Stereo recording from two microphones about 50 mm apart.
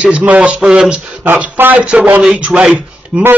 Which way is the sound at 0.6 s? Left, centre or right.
Centre.